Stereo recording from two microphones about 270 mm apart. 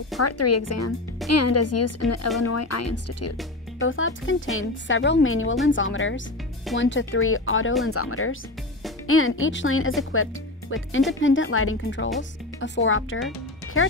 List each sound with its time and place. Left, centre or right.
0.2 s speech: left
3.8 s speech: left